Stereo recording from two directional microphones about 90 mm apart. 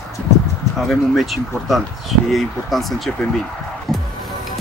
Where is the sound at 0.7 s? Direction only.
Centre (ahead or behind).